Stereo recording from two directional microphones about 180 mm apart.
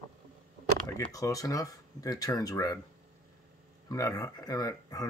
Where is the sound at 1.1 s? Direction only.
20° left (ahead or behind).